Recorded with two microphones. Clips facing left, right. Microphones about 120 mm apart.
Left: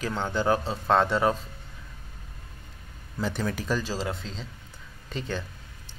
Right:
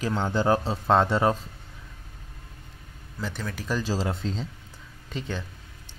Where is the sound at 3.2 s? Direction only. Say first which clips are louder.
Left 4 dB; 5° left (ahead or behind).